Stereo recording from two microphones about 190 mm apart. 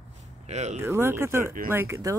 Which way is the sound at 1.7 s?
15° right (ahead or behind).